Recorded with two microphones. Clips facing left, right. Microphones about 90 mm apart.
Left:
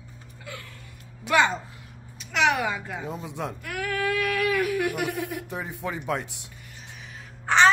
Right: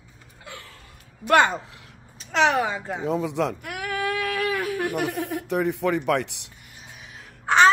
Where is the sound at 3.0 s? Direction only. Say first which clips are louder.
Right 12 dB; 90° right.